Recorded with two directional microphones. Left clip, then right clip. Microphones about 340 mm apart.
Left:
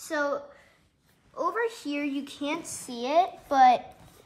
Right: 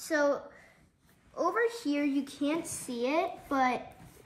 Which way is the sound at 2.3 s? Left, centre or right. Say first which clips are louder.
Even; centre.